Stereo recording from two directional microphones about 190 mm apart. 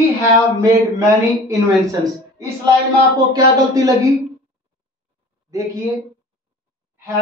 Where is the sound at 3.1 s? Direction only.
20° right (ahead or behind).